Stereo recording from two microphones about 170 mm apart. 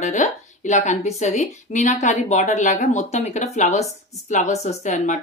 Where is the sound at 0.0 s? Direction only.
45° left (ahead or behind).